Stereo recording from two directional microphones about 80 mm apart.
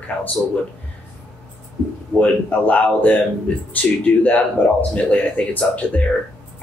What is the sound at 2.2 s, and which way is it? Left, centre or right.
Speech, centre.